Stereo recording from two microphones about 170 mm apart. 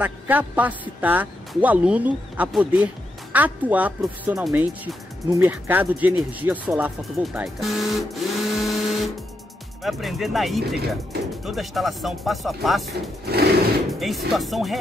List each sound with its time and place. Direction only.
0.0 s a woman's voice: 10° right (ahead or behind)
13.2 s sewing machine: 70° right (ahead or behind)
13.9 s speech: centre (ahead or behind)